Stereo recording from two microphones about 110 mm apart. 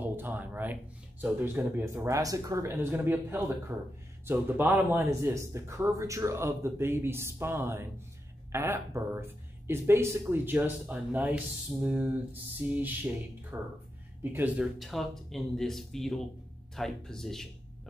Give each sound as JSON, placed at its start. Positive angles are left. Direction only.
{"t": 0.0, "sound": "speech", "side_deg": -20}
{"t": 14.8, "sound": "speech", "side_deg": 0}